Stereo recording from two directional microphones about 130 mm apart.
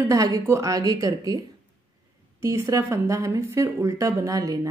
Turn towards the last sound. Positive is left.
turn(degrees=-25)  # may be behind; listen again after turning